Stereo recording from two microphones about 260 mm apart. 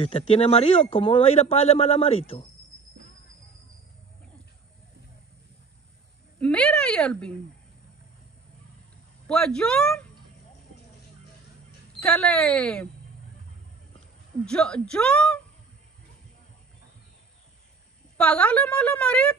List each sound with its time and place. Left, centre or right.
0.0 s speech: left
6.4 s a sound: centre
9.3 s a woman's voice: centre
12.0 s a woman's voice: centre
14.4 s a woman's voice: centre
18.1 s a woman's voice: centre